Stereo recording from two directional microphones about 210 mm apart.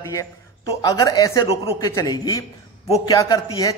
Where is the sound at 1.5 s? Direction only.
25° left (ahead or behind).